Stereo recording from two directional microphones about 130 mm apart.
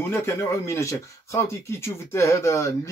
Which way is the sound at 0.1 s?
15° left (ahead or behind).